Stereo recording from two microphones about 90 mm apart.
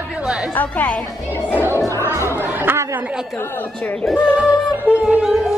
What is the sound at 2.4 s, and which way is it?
Speech, 25° right (ahead or behind).